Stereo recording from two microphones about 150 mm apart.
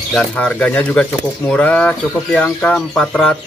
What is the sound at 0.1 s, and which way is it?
Speech, 5° left (ahead or behind).